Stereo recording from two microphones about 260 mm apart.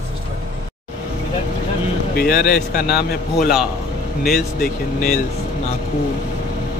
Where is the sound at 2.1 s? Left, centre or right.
Left.